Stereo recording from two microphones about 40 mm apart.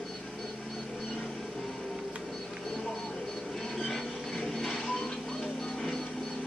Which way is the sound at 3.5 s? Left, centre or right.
Centre.